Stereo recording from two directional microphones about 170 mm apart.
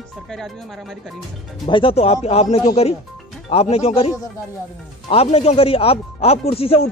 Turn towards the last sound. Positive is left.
turn(degrees=35)  # may be behind; listen again after turning